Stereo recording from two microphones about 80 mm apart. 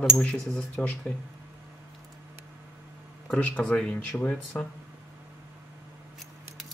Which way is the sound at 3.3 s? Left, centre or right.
Centre.